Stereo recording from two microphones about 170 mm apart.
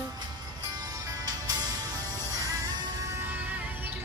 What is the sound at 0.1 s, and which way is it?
Music, 20° right (ahead or behind).